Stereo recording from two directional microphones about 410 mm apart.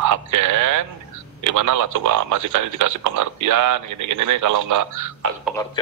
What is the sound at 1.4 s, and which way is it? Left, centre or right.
A man's voice, right.